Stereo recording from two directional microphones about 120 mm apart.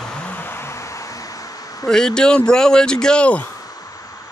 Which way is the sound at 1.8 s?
5° left (ahead or behind).